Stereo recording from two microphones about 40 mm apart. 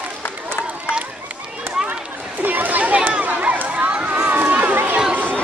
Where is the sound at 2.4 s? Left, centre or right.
Right.